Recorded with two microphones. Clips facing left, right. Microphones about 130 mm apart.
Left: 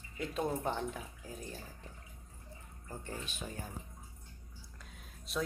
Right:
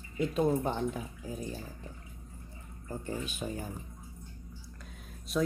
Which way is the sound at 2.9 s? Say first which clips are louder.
Right 7 dB; 5° right (ahead or behind).